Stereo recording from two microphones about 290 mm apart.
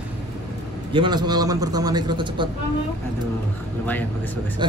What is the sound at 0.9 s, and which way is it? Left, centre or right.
A man's voice, centre.